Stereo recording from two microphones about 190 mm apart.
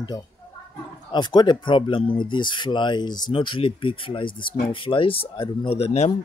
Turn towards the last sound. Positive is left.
turn(degrees=35)  # may be behind; listen again after turning